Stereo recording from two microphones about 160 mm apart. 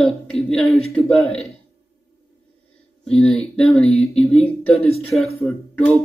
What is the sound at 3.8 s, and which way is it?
Speech, 40° left (ahead or behind).